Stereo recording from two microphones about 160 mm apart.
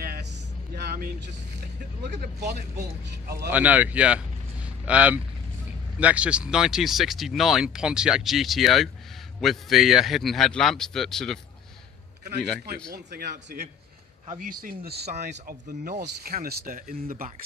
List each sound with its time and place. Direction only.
3.4 s speech: 10° right (ahead or behind)
12.9 s speech: 70° right (ahead or behind)
15.2 s speech: 65° right (ahead or behind)